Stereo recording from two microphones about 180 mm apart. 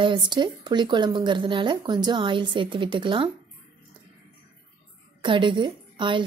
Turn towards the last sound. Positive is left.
turn(degrees=-25)  # may be behind; listen again after turning